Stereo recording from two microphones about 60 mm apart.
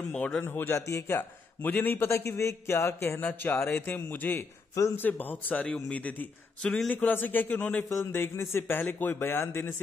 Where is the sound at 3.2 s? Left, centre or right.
Left.